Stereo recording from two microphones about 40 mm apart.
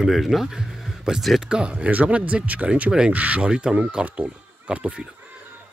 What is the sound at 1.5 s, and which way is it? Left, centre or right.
Speech, right.